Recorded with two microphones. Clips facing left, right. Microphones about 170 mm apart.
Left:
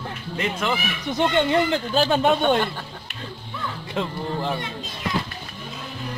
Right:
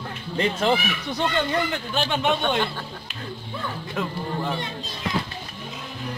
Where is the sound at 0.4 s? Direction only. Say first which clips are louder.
Right 4 dB; 35° right (ahead or behind).